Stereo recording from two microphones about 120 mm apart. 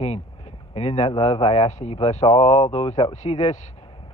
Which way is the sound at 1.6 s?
70° left (ahead or behind).